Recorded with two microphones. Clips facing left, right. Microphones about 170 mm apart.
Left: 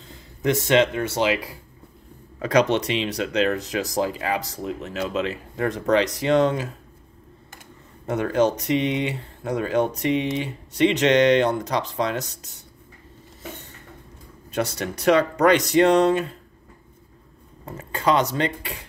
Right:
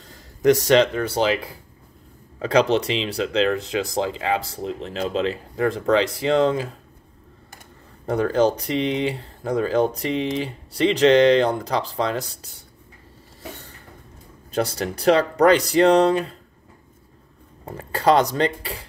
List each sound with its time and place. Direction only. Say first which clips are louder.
0.0 s speech: right 6 dB; 40° right (ahead or behind)
8.1 s speech: right 2 dB; 30° right (ahead or behind)
13.4 s a sound: even; 35° right (ahead or behind)
14.5 s speech: right 2 dB; 30° right (ahead or behind)
17.6 s speech: right 3 dB; 35° right (ahead or behind)